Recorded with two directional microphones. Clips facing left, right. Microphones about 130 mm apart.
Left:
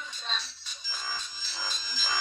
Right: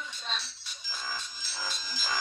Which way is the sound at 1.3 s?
10° right (ahead or behind).